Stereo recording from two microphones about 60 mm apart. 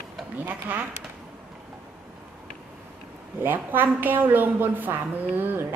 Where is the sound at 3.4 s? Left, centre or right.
Right.